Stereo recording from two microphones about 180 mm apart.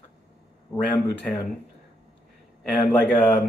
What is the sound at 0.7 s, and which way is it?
Speech, 15° left (ahead or behind).